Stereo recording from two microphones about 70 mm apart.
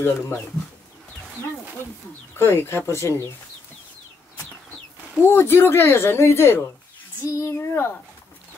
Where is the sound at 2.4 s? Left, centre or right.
Left.